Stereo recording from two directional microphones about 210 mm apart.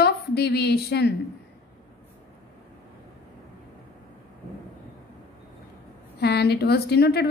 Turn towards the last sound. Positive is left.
turn(degrees=50)  # may be behind; listen again after turning